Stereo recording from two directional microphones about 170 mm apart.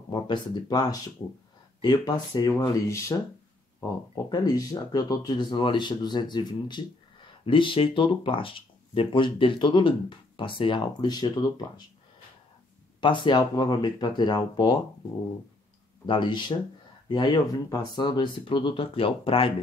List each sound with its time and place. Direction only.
0.1 s speech: 25° left (ahead or behind)
13.0 s speech: 30° left (ahead or behind)
16.1 s speech: 25° left (ahead or behind)